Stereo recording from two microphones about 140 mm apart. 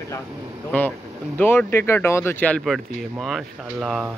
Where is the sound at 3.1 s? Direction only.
Centre (ahead or behind).